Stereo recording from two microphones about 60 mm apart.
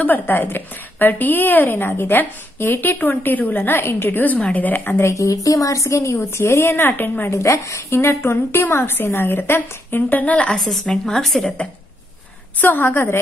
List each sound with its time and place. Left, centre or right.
0.0 s a woman's voice: left
4.4 s speech: left
5.0 s a woman's voice: left
7.2 s a woman's voice: left
8.0 s a woman's voice: left
10.9 s a woman's voice: centre
12.5 s a woman's voice: left